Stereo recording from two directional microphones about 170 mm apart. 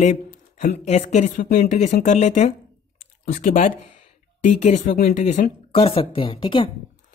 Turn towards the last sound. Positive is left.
turn(degrees=30)  # may be behind; listen again after turning